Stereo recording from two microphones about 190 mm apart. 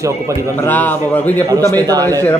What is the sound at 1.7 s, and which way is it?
Speech, 20° right (ahead or behind).